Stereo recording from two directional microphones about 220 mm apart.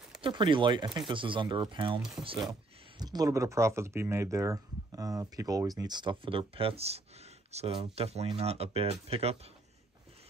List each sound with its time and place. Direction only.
0.2 s speech: 20° right (ahead or behind)
2.2 s speech: 5° right (ahead or behind)
3.0 s speech: 15° right (ahead or behind)